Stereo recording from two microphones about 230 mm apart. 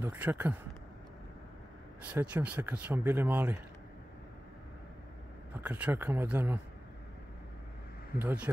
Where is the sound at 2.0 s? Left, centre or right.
Centre.